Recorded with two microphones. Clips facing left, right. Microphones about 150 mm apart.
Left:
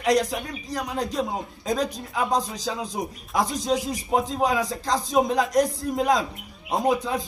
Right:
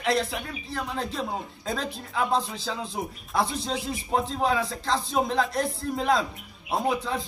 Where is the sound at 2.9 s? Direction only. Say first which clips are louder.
Even; 15° left (ahead or behind).